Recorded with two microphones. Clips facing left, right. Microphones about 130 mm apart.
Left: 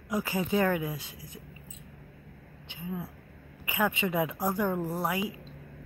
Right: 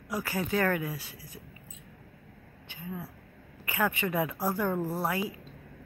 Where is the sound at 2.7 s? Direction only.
20° left (ahead or behind).